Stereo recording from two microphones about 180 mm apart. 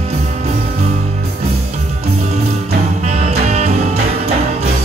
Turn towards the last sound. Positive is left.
turn(degrees=-35)  # may be behind; listen again after turning